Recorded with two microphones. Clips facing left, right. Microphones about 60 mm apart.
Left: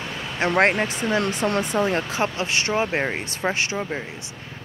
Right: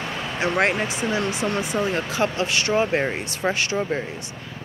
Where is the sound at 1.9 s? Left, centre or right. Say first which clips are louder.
Right 1 dB; left.